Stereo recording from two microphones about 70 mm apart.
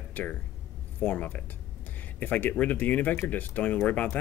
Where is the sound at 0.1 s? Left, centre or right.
Left.